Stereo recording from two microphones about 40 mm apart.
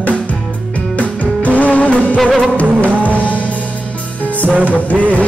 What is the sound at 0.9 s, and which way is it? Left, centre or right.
Music, left.